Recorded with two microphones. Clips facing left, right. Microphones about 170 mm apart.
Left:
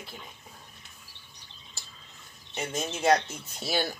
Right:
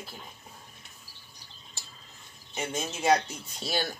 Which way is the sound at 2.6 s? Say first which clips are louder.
Left 1 dB; 5° right (ahead or behind).